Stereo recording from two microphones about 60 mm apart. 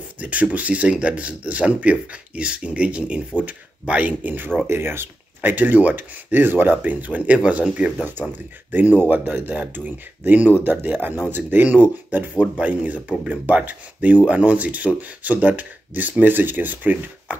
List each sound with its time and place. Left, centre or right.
0.2 s speech: right
4.6 s speech: right